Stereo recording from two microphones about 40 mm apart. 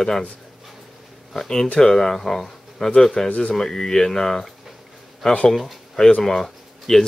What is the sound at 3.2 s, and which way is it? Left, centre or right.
Speech, left.